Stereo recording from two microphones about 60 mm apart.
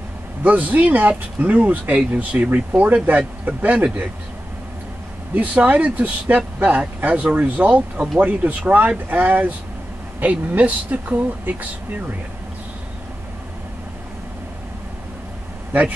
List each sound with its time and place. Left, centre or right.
0.4 s speech: right
5.3 s speech: right
10.5 s speech: right